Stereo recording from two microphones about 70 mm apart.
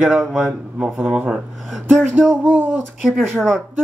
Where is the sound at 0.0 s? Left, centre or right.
Centre.